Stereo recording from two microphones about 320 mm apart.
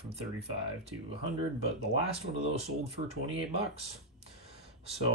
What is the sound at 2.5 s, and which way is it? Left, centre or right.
Speech, centre.